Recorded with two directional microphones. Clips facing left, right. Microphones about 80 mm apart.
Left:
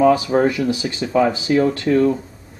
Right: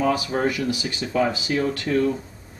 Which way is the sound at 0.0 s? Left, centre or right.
Left.